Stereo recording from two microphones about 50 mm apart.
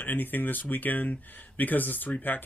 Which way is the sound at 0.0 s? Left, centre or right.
Left.